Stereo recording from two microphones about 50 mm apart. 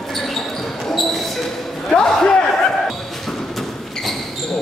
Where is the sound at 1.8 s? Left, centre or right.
Centre.